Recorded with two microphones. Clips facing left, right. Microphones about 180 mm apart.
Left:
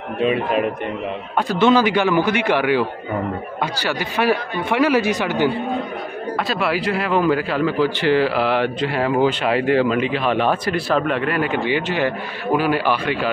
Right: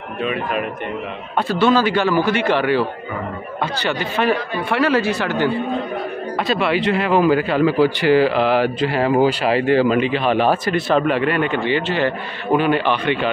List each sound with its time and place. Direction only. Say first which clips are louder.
0.2 s a man's voice: left 4 dB; 30° left (ahead or behind)
1.6 s speech: left 1 dB; 15° left (ahead or behind)
6.5 s speech: right 4 dB; centre (ahead or behind)
11.5 s speech: right 1 dB; 10° left (ahead or behind)